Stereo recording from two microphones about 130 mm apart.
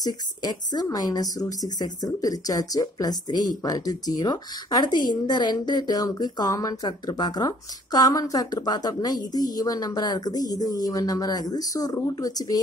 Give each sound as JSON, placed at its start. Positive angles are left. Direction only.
{"t": 0.0, "sound": "a woman's voice", "side_deg": 30}